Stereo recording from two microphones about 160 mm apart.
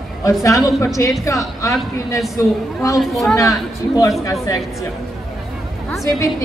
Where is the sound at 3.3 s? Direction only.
20° left (ahead or behind).